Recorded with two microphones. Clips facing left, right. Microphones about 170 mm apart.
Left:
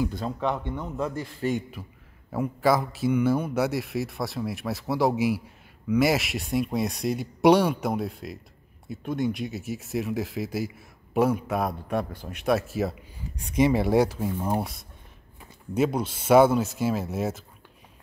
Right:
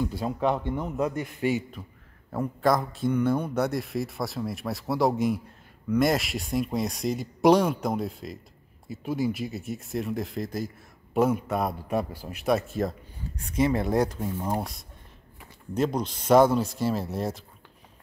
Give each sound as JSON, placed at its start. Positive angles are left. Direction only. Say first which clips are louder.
{"t": 0.1, "sound": "speech", "louder": "right 2 dB", "side_deg": -10}
{"t": 1.1, "sound": "a man's voice", "louder": "right 1 dB", "side_deg": 30}
{"t": 1.8, "sound": "speech", "louder": "left 1 dB", "side_deg": 5}